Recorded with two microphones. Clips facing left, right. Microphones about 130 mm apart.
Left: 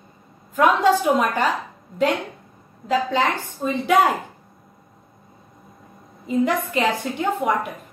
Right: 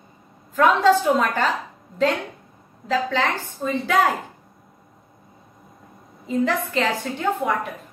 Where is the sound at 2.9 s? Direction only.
15° left (ahead or behind).